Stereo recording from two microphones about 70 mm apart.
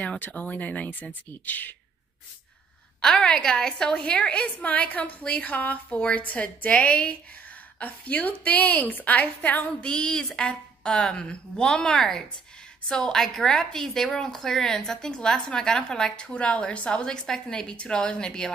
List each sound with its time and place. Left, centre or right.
0.2 s speech: centre
3.0 s a woman's voice: centre